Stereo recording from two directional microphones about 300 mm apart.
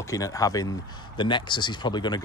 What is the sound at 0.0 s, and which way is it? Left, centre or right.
Speech, centre.